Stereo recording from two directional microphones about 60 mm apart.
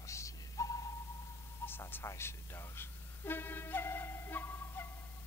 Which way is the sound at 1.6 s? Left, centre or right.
Left.